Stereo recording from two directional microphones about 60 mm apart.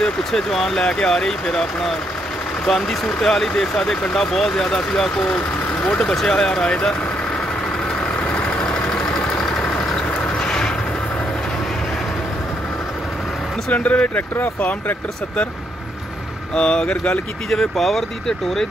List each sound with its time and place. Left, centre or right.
0.0 s speech: centre
8.6 s vehicle: centre
13.7 s speech: left
16.5 s speech: centre
17.5 s speech: centre